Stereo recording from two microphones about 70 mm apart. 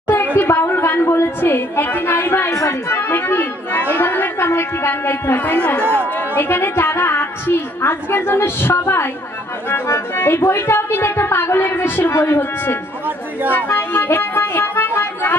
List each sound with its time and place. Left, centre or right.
0.1 s a sound: left
2.9 s speech: left
5.4 s speech: left
13.5 s music: left